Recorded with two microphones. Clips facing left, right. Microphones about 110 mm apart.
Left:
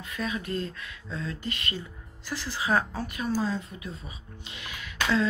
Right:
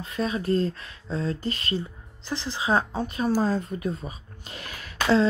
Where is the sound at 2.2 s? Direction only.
20° right (ahead or behind).